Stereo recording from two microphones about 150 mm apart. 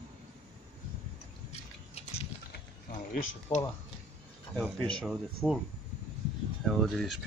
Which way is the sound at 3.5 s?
35° left (ahead or behind).